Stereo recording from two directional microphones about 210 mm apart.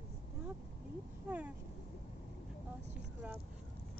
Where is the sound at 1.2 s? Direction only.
5° right (ahead or behind).